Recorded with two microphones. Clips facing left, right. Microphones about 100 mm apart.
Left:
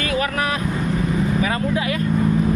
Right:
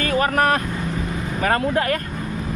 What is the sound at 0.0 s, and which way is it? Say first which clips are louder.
Vehicle: right 3 dB; 40° right (ahead or behind).